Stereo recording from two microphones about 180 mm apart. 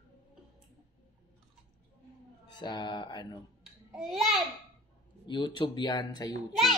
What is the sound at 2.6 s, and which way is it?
Speech, 25° left (ahead or behind).